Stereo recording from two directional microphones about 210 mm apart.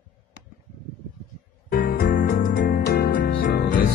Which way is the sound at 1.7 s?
45° left (ahead or behind).